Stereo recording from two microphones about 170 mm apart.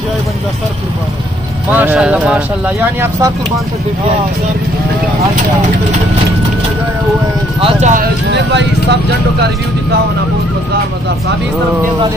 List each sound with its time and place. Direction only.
1.7 s speech: 10° right (ahead or behind)
7.6 s speech: 45° right (ahead or behind)